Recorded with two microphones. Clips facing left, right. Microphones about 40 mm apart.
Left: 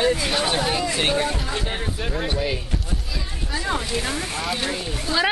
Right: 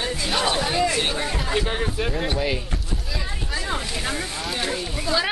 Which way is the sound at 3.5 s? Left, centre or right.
Centre.